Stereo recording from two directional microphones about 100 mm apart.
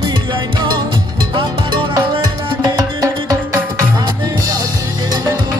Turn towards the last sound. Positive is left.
turn(degrees=-35)  # may be behind; listen again after turning